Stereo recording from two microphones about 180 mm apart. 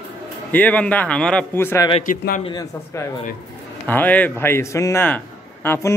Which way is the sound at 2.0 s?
50° left (ahead or behind).